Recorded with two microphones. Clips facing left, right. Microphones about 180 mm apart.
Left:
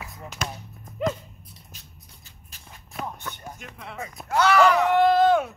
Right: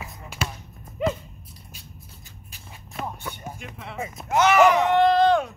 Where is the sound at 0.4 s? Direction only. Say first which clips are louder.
Right 2 dB; 5° right (ahead or behind).